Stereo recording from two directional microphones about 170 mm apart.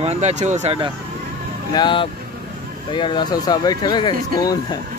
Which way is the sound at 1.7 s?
25° left (ahead or behind).